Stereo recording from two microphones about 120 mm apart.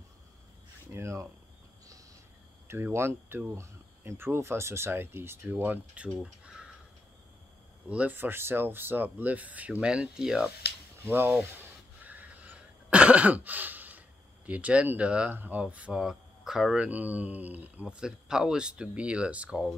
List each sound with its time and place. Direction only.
0.9 s a sound: 25° right (ahead or behind)
2.7 s speech: 20° right (ahead or behind)
6.0 s speech: 5° right (ahead or behind)
7.9 s speech: 10° right (ahead or behind)
11.1 s speech: 15° right (ahead or behind)